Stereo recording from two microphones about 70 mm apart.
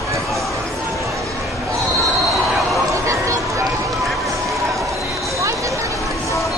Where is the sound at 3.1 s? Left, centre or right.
Right.